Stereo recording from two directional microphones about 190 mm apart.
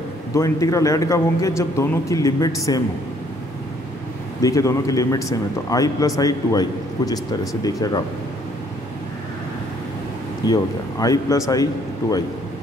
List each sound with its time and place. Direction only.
0.3 s speech: 15° left (ahead or behind)
4.4 s a man's voice: 15° left (ahead or behind)
10.4 s a man's voice: 20° left (ahead or behind)